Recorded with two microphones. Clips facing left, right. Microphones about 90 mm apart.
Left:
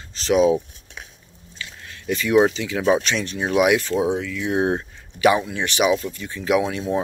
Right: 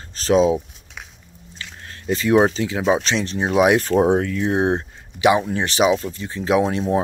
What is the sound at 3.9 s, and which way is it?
Speech, 55° right (ahead or behind).